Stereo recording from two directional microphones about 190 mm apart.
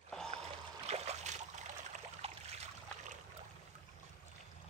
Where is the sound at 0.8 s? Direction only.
35° right (ahead or behind).